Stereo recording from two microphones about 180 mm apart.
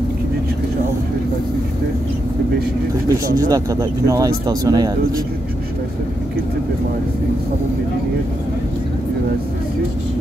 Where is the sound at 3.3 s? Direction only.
20° right (ahead or behind).